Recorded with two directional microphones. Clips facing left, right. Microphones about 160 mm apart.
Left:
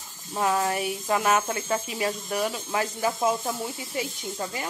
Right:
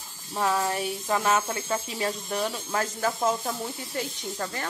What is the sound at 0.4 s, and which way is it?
Speech, 15° left (ahead or behind).